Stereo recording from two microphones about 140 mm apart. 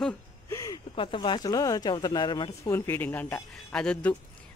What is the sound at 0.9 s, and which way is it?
Speech, 40° left (ahead or behind).